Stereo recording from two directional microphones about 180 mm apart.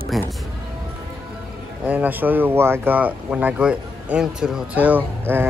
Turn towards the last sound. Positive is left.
turn(degrees=-10)  # may be behind; listen again after turning